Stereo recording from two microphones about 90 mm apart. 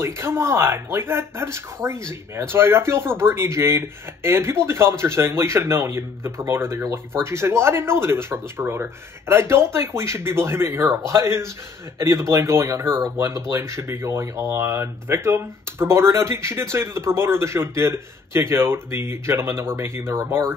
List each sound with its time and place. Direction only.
0.0 s speech: 30° right (ahead or behind)